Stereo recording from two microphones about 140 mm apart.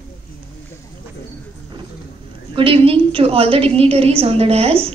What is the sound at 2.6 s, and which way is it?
A woman's voice, 40° right (ahead or behind).